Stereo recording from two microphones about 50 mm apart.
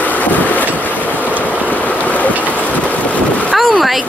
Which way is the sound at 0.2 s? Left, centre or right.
Left.